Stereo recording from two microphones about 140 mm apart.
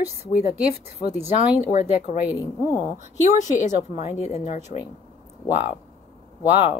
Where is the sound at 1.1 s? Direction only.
15° right (ahead or behind).